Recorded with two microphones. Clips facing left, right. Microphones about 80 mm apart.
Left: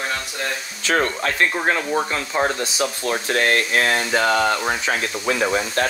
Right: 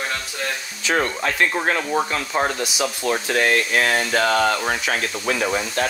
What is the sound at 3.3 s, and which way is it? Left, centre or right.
Speech, left.